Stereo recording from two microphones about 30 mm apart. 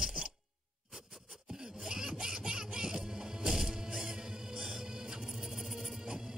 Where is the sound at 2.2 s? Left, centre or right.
Right.